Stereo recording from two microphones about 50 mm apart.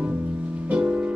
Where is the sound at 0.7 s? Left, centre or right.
Right.